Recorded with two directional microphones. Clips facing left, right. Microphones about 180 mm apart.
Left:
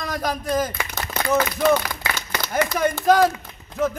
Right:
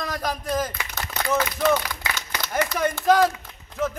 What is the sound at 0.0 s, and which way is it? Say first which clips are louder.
Speech: left 2 dB; centre (ahead or behind).